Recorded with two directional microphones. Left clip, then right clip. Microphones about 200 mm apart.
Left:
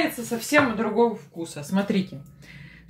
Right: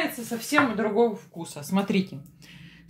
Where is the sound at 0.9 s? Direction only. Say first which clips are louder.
Left 1 dB; 35° right (ahead or behind).